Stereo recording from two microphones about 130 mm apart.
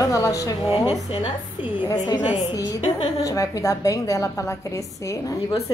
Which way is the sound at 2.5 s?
25° left (ahead or behind).